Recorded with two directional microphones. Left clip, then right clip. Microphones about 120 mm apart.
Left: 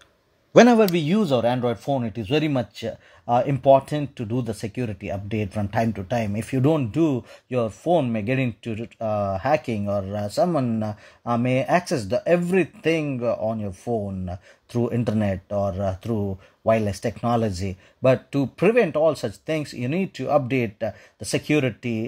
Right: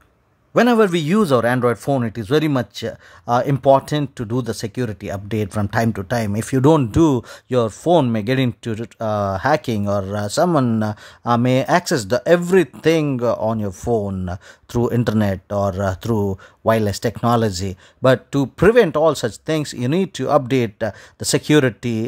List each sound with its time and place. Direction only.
0.7 s speech: 35° right (ahead or behind)
2.2 s speech: 35° right (ahead or behind)
6.4 s speech: 50° right (ahead or behind)
8.1 s speech: 35° right (ahead or behind)
8.5 s speech: 50° right (ahead or behind)
15.5 s speech: 50° right (ahead or behind); by 16.3 s 65° right (ahead or behind)
16.6 s speech: 35° right (ahead or behind)